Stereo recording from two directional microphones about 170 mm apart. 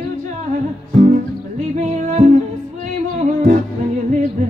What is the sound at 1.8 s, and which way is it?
Music, 45° right (ahead or behind).